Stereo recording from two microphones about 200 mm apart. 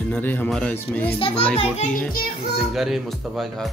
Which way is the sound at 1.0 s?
30° left (ahead or behind).